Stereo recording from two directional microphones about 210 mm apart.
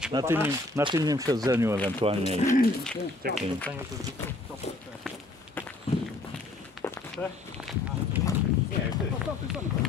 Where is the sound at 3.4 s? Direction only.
5° left (ahead or behind).